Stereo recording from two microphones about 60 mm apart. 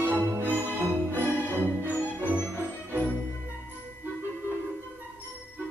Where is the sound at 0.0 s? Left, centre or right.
Right.